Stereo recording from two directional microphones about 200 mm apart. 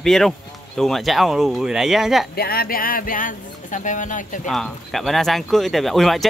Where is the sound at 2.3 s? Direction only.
50° left (ahead or behind).